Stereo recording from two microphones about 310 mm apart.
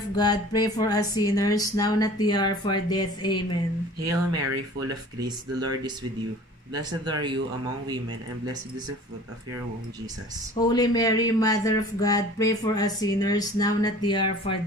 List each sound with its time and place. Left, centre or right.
0.1 s speech: centre
4.1 s speech: right
4.7 s speech: centre
10.6 s speech: centre